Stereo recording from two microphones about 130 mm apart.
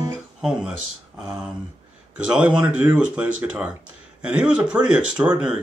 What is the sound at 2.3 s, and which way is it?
Speech, 10° right (ahead or behind).